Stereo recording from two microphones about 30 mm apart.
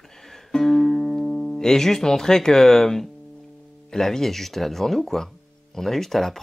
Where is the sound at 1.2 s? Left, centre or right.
Left.